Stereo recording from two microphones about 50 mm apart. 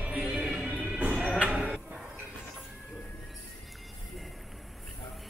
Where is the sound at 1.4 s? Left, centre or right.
Centre.